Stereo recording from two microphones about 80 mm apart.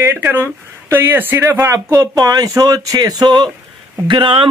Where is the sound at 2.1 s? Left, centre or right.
Right.